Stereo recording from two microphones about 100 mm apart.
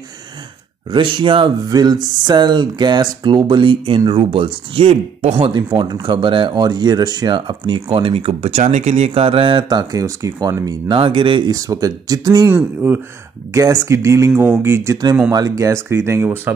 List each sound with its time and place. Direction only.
0.9 s speech: 55° right (ahead or behind)
1.7 s speech: 45° right (ahead or behind); by 5.5 s 75° right (ahead or behind)
5.5 s speech: 50° right (ahead or behind)
10.9 s speech: 55° right (ahead or behind)
11.5 s speech: 35° right (ahead or behind)
12.5 s speech: 20° right (ahead or behind)
13.5 s speech: 35° right (ahead or behind)